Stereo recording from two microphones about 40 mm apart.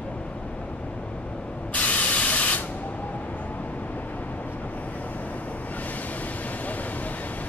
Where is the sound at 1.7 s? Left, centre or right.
Left.